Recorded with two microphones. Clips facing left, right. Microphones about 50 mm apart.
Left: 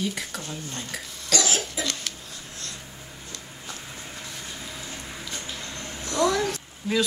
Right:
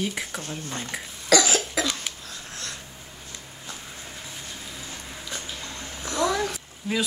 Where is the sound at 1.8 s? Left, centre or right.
Right.